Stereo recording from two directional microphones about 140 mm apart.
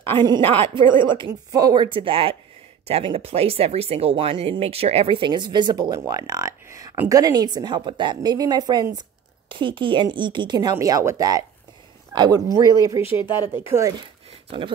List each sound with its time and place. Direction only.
0.2 s speech: 35° right (ahead or behind)
13.2 s speech: 30° left (ahead or behind)
13.6 s speech: 20° right (ahead or behind)